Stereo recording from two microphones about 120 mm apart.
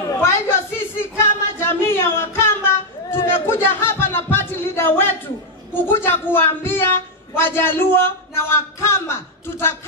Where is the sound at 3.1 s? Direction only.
20° left (ahead or behind).